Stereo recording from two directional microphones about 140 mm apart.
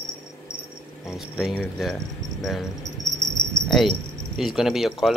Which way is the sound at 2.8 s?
25° right (ahead or behind).